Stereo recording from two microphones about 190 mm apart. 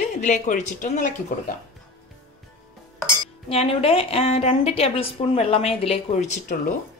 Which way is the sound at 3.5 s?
30° left (ahead or behind).